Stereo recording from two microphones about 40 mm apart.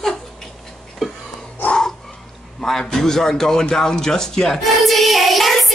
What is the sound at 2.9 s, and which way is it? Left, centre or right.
A man's voice, centre.